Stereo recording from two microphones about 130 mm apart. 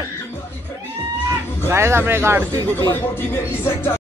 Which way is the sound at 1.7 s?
20° right (ahead or behind).